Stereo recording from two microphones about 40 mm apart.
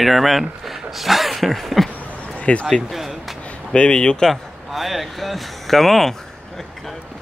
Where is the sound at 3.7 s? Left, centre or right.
Left.